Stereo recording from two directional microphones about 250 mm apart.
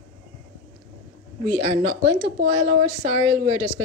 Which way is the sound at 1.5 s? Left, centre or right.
Right.